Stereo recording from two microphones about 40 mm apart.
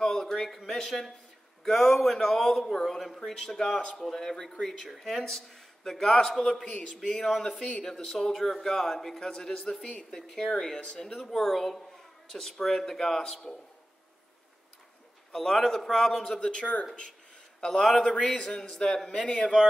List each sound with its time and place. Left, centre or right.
0.0 s a sound: centre
0.7 s speech: centre
3.2 s speech: centre
7.4 s speech: left
7.8 s speech: centre
15.3 s speech: centre
16.3 s a man's voice: left